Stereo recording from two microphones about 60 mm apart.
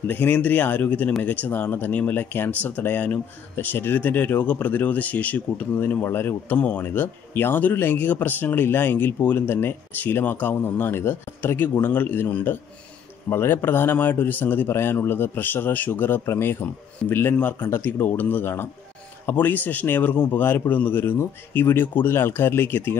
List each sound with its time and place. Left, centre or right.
0.0 s speech: left